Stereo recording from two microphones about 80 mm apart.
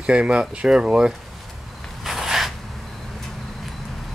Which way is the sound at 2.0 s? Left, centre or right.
Centre.